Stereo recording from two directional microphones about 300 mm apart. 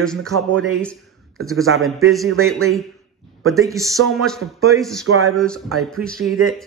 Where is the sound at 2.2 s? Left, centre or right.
Right.